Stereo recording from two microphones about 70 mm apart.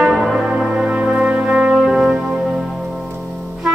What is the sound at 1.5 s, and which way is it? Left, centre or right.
Music, centre.